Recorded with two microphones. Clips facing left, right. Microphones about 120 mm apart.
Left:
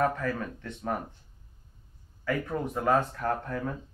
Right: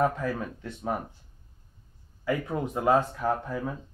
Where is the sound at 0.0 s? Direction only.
10° right (ahead or behind).